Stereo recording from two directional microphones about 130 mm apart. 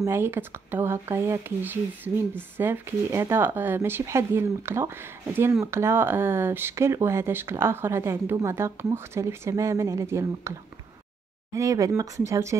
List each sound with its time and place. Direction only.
0.0 s speech: 20° right (ahead or behind)
11.5 s speech: 25° right (ahead or behind)